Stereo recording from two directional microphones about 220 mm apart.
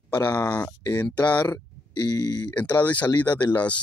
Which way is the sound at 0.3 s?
10° left (ahead or behind).